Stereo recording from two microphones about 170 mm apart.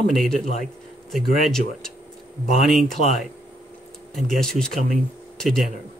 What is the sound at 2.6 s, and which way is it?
Speech, centre (ahead or behind).